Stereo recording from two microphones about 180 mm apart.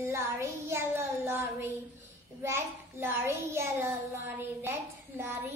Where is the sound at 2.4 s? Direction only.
15° right (ahead or behind).